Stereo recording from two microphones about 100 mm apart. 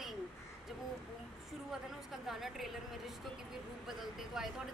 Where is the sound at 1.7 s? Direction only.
Centre (ahead or behind).